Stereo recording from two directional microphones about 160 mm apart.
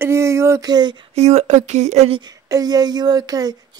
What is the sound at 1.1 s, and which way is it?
Speech, 40° right (ahead or behind).